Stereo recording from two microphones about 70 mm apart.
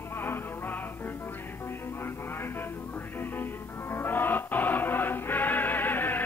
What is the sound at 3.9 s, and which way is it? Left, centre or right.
Music, left.